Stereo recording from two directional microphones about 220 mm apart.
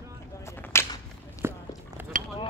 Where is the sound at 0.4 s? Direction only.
10° left (ahead or behind).